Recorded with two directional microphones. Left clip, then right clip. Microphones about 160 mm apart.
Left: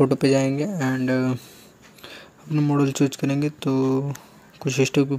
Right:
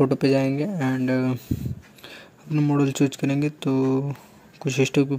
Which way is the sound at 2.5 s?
Centre (ahead or behind).